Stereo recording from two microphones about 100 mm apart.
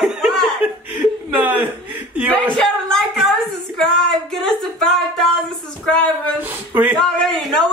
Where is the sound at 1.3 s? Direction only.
15° right (ahead or behind).